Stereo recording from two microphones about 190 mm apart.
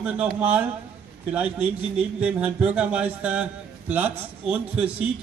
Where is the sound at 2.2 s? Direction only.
5° right (ahead or behind).